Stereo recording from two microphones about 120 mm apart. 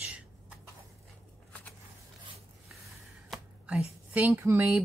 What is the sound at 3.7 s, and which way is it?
Speech, 10° right (ahead or behind).